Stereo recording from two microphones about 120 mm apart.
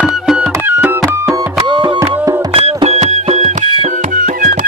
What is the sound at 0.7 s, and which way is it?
Music, 15° right (ahead or behind).